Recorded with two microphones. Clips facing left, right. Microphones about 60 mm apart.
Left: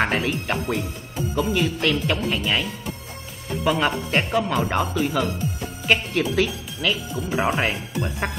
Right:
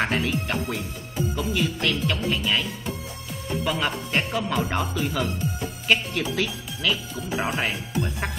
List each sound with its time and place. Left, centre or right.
0.0 s speech: centre
3.6 s speech: centre
7.3 s speech: left